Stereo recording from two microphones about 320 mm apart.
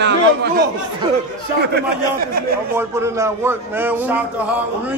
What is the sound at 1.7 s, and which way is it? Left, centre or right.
Speech, right.